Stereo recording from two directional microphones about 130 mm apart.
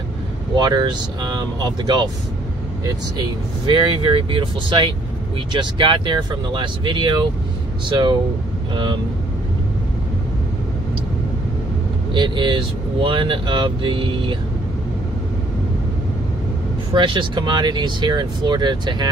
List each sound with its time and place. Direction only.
0.6 s speech: 35° right (ahead or behind)
12.1 s speech: 35° right (ahead or behind)
16.9 s speech: 40° right (ahead or behind)